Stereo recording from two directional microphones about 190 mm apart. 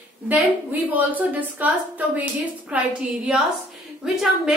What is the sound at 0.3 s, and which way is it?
A woman's voice, 10° right (ahead or behind).